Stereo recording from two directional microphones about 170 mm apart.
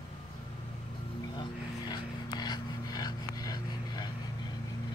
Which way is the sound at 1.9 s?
25° left (ahead or behind).